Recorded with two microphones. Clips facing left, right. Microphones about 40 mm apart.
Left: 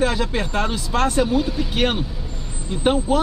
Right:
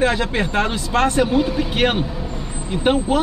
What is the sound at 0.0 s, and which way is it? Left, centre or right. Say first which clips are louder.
Speech: right 2 dB; right.